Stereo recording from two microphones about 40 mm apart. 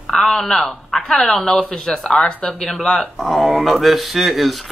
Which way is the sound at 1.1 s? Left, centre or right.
Left.